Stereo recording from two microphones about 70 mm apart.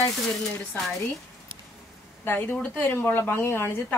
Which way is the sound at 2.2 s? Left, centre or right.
Left.